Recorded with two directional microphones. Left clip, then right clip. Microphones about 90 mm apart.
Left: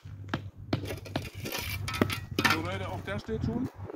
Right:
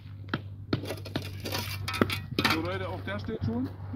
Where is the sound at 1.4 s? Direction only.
90° right.